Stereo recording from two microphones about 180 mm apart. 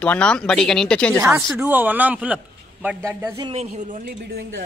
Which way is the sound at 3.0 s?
20° right (ahead or behind).